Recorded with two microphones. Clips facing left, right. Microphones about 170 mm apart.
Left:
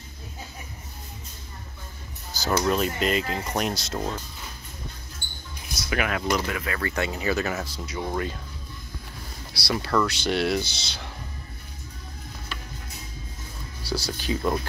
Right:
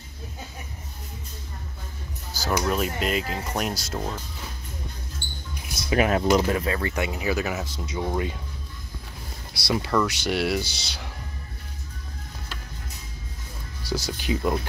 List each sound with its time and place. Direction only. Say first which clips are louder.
2.4 s speech: left 1 dB; 5° right (ahead or behind)
5.9 s speech: right 5 dB; 35° right (ahead or behind); by 8.4 s 15° right (ahead or behind)
9.5 s speech: right 1 dB; 20° right (ahead or behind)
13.8 s speech: right 1 dB; 20° right (ahead or behind)